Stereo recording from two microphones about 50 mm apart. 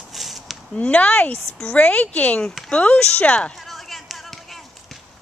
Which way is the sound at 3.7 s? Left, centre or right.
Centre.